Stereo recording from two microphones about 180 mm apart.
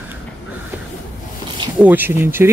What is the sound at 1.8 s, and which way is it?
Speech, 10° right (ahead or behind).